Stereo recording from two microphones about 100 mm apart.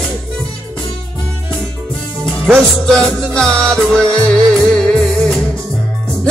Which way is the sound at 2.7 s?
5° left (ahead or behind).